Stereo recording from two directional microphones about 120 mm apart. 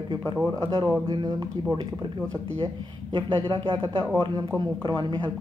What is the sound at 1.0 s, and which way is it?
Speech, 35° right (ahead or behind).